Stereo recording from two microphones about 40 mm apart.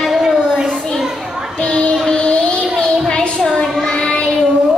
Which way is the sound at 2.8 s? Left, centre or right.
Left.